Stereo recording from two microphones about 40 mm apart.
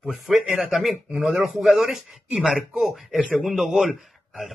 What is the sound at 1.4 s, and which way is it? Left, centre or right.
Speech, centre.